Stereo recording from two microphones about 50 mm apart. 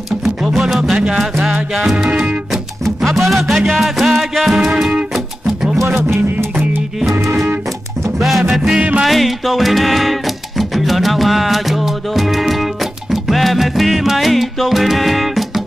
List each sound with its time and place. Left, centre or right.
0.2 s music: centre
2.5 s music: centre
5.8 s music: right
7.1 s music: right
8.2 s music: centre
8.5 s music: centre
9.0 s music: centre